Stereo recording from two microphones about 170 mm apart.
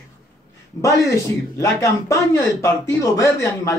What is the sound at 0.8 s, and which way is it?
A man's voice, 20° left (ahead or behind).